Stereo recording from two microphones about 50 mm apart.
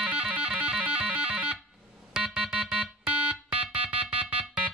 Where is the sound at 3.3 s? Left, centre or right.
Right.